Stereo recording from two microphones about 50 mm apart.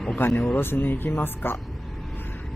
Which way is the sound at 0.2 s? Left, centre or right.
Left.